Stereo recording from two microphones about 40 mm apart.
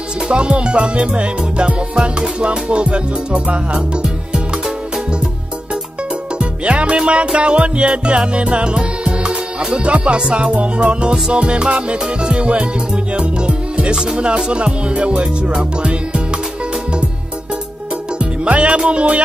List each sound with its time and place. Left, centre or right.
0.3 s music: right
6.3 s music: right
18.2 s music: right